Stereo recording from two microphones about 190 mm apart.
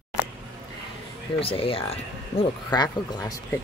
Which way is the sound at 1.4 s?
30° left (ahead or behind).